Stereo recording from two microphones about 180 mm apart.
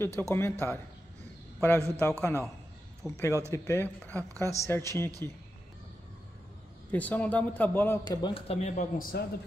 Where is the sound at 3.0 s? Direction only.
Centre (ahead or behind).